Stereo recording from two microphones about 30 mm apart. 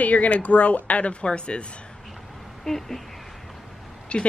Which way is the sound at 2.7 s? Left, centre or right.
Centre.